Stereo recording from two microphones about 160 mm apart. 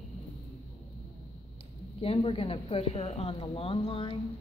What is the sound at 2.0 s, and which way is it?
Speech, 35° left (ahead or behind).